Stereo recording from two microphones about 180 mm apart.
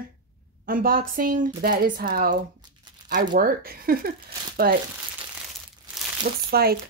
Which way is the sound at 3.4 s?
55° right (ahead or behind).